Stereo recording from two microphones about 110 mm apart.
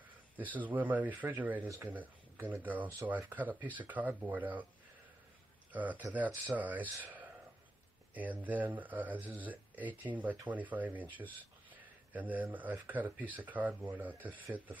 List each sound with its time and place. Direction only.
0.5 s speech: 15° right (ahead or behind)
5.7 s speech: 15° right (ahead or behind)
8.1 s speech: 15° right (ahead or behind)